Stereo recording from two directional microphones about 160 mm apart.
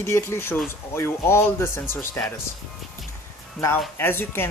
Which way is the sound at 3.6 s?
Centre (ahead or behind).